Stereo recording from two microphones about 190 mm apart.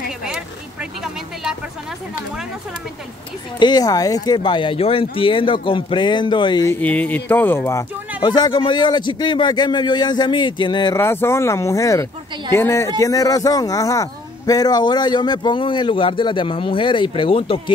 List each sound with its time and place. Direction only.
0.2 s vehicle: 5° right (ahead or behind)
3.5 s a man's voice: 20° left (ahead or behind)
6.7 s a man's voice: 10° left (ahead or behind); by 17.7 s 30° left (ahead or behind)